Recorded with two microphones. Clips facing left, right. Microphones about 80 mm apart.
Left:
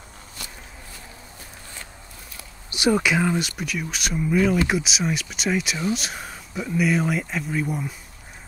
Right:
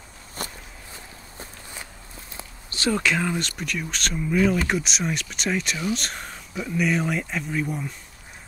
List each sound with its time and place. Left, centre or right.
0.4 s walk: right
2.7 s speech: centre